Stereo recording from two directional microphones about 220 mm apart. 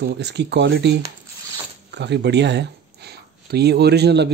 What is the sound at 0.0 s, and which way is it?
Speech, 50° right (ahead or behind).